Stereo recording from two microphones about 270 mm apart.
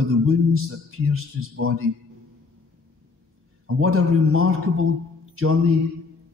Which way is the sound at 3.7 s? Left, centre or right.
Right.